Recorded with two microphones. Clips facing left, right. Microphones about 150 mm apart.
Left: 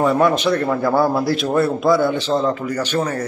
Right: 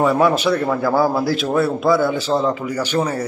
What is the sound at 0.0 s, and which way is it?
A man's voice, 5° right (ahead or behind).